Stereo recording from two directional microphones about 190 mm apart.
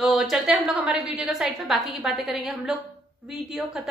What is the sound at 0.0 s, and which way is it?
A woman's voice, centre (ahead or behind).